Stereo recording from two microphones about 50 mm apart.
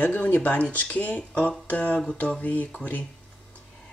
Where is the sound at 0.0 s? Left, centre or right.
Left.